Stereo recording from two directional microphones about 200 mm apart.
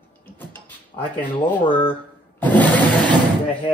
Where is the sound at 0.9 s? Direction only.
20° left (ahead or behind).